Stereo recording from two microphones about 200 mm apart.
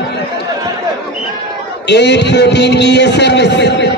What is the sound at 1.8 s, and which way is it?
A man's voice, 60° left (ahead or behind).